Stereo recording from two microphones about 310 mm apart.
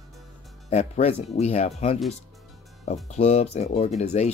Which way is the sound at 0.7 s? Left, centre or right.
Left.